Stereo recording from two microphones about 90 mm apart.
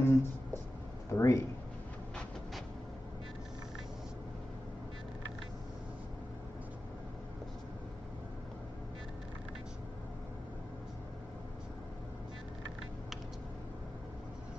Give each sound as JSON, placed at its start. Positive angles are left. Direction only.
{"t": 0.0, "sound": "writing", "side_deg": 25}
{"t": 1.1, "sound": "speech", "side_deg": 35}